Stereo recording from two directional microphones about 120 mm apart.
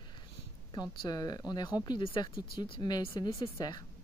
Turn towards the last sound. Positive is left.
turn(degrees=35)  # may be behind; listen again after turning